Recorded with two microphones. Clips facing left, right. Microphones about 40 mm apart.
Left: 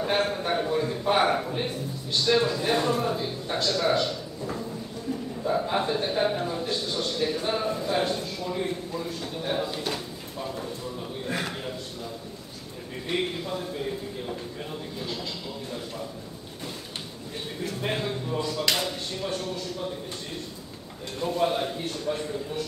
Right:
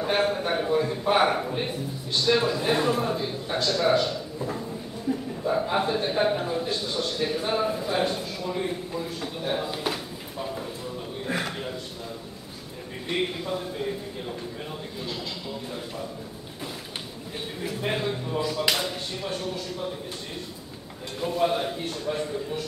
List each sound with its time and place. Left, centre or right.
0.0 s a man's voice: centre
5.1 s a sound: right
5.4 s a sound: centre
13.1 s a man's voice: centre
17.6 s speech: centre
21.2 s a man's voice: centre